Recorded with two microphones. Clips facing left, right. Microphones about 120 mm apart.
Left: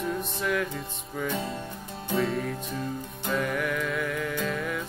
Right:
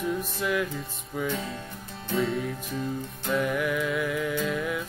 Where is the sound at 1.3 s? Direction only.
30° left (ahead or behind).